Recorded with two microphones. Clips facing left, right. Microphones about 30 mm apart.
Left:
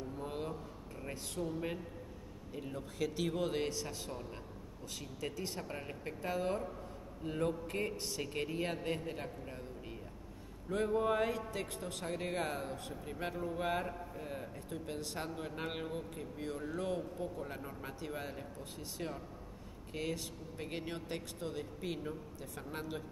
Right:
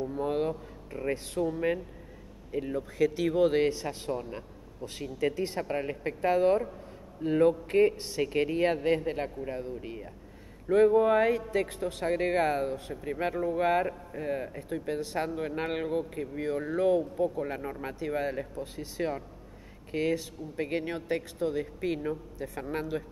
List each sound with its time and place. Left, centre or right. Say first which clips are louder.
0.0 s speech: right 12 dB; right
1.4 s speech: right 9 dB; right
12.6 s speech: right 9 dB; centre
16.4 s speech: right 12 dB; right
17.9 s speech: right 13 dB; right
19.9 s speech: right 10 dB; right